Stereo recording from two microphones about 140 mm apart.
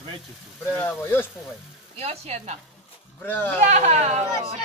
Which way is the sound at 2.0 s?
50° right (ahead or behind).